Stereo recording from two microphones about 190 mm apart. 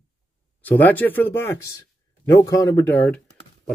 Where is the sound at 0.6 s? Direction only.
10° left (ahead or behind).